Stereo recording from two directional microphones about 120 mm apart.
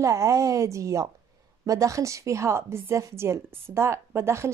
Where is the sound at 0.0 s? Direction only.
25° right (ahead or behind).